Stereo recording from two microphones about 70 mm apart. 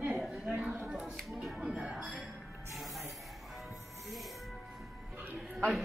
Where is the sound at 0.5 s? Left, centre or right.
Right.